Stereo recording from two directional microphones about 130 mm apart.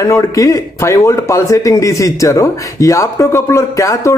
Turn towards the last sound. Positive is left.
turn(degrees=25)  # may be behind; listen again after turning